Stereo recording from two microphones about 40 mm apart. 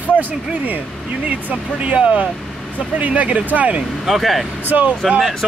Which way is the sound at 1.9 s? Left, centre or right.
Right.